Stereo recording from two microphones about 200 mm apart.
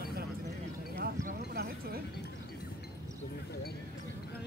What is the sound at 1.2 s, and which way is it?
Horse, 50° right (ahead or behind).